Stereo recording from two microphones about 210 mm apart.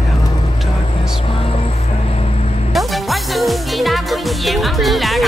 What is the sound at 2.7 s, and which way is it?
Music, centre (ahead or behind).